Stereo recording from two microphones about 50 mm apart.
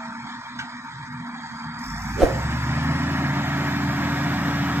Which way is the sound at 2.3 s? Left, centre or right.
Right.